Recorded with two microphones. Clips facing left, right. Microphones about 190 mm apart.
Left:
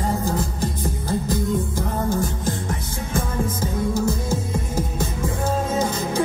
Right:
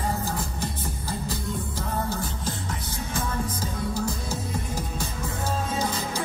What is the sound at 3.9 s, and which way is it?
Music, 50° left (ahead or behind).